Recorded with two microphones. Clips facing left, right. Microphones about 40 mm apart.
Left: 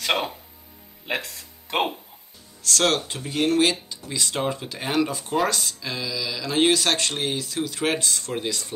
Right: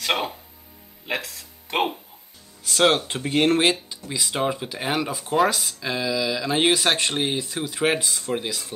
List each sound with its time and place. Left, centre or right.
0.0 s speech: centre
2.6 s speech: centre
3.1 s speech: right
3.6 s speech: centre
5.8 s mantra: right
6.7 s speech: centre